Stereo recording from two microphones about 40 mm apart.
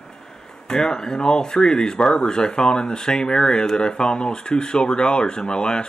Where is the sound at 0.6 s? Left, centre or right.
Centre.